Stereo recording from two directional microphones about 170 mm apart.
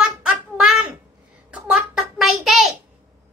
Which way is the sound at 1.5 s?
Centre (ahead or behind).